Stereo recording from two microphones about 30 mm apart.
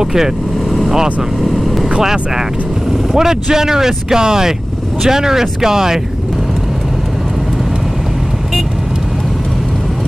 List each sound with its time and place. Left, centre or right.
0.0 s vehicle: centre
0.7 s vehicle: centre
2.0 s speech: centre